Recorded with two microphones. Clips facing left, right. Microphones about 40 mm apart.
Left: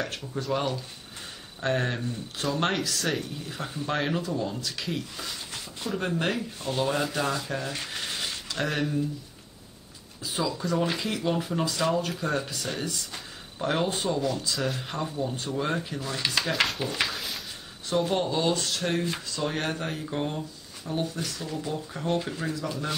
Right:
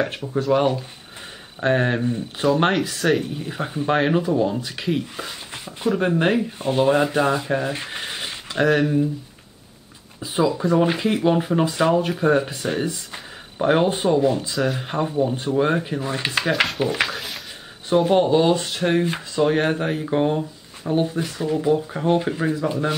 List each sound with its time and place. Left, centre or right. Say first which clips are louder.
0.0 s speech: right 9 dB; right
10.2 s speech: right 9 dB; right
16.5 s speech: right 5 dB; centre
17.0 s a sound: right 5 dB; centre
17.8 s speech: right 9 dB; right